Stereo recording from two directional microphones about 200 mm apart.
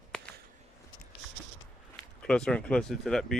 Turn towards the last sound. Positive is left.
turn(degrees=0)  # may be behind; listen again after turning